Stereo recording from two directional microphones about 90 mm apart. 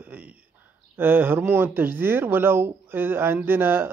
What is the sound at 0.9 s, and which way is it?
Speech, 25° right (ahead or behind).